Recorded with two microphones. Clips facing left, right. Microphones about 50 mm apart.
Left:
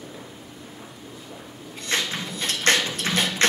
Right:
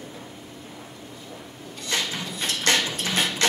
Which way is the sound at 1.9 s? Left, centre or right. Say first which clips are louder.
Left 1 dB; left.